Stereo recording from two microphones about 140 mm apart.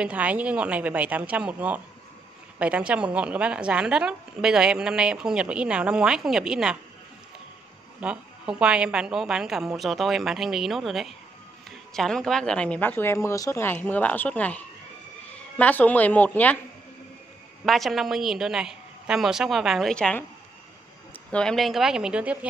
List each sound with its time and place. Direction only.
0.0 s a woman's voice: 10° right (ahead or behind)
8.0 s a woman's voice: 10° right (ahead or behind); by 16.5 s 10° left (ahead or behind)
17.6 s a woman's voice: centre (ahead or behind)
21.3 s a woman's voice: 5° left (ahead or behind)